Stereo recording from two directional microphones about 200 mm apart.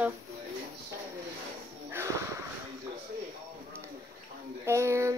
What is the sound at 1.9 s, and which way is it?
Snort, 10° right (ahead or behind).